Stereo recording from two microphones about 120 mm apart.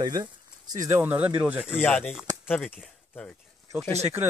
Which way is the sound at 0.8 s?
20° right (ahead or behind).